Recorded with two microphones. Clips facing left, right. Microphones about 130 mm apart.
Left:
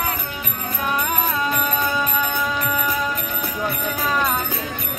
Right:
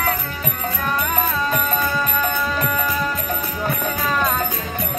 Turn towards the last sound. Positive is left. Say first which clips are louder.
# right 1 dB
turn(degrees=10)  # may be behind; listen again after turning